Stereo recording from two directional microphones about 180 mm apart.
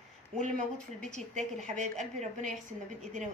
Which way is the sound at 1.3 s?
40° right (ahead or behind).